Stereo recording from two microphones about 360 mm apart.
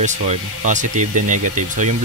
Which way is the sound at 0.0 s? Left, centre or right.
Centre.